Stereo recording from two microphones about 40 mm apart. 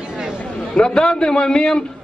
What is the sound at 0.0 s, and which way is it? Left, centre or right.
Chatter, right.